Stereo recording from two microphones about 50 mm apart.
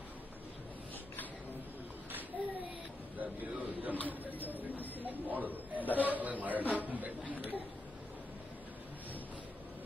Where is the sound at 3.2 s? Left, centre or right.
Right.